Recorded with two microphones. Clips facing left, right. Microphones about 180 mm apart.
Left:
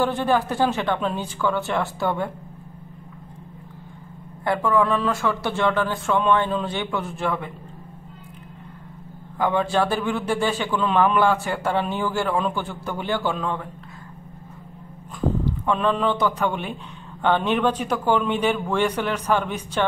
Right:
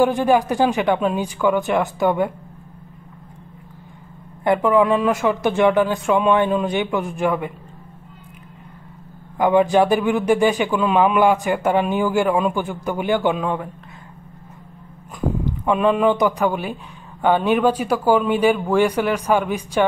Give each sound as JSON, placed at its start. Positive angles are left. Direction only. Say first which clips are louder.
{"t": 0.0, "sound": "a man's voice", "louder": "right 5 dB", "side_deg": -15}
{"t": 4.5, "sound": "a man's voice", "louder": "right 5 dB", "side_deg": -20}
{"t": 9.4, "sound": "a man's voice", "louder": "right 6 dB", "side_deg": -15}
{"t": 15.1, "sound": "a man's voice", "louder": "right 1 dB", "side_deg": -15}